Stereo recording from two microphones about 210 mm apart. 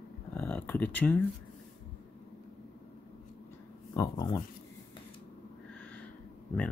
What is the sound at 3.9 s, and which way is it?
Speech, 20° left (ahead or behind).